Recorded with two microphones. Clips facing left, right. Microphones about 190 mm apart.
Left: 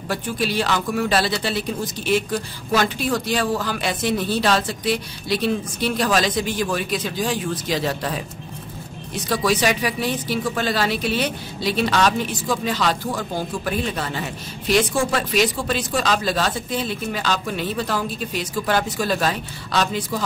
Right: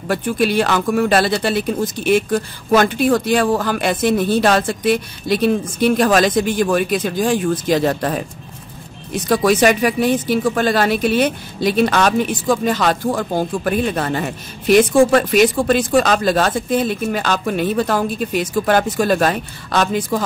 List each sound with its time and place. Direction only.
0.1 s speech: 55° right (ahead or behind)